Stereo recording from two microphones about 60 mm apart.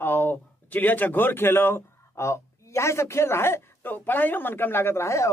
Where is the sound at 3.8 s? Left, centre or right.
Left.